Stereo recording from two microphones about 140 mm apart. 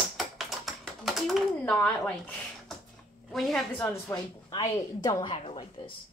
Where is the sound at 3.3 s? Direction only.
Centre (ahead or behind).